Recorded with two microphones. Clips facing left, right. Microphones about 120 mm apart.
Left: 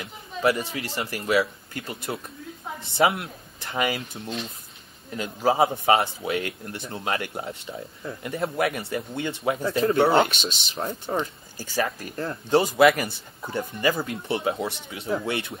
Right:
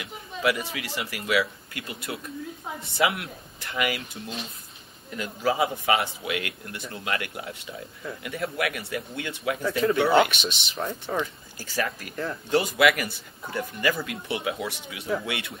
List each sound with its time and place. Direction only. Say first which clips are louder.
0.0 s speech: left 3 dB; 35° left (ahead or behind)